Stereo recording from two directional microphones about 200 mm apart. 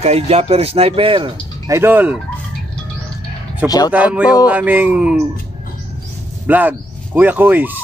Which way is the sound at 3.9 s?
5° right (ahead or behind).